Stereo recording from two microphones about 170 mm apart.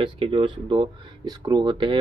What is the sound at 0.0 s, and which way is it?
Speech, 30° right (ahead or behind).